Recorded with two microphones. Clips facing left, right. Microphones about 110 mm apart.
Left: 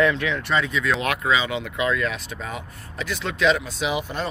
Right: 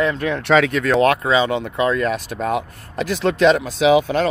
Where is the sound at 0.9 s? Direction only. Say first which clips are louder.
Right 8 dB; 35° right (ahead or behind).